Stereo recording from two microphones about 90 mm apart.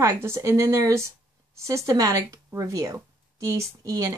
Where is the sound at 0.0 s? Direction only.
30° right (ahead or behind).